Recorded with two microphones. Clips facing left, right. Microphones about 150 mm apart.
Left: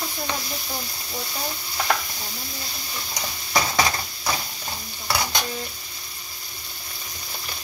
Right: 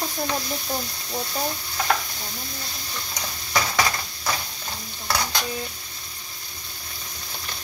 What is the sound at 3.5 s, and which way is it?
Stir, 20° left (ahead or behind).